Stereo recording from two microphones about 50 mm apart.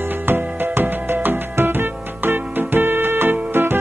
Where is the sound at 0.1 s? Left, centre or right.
Right.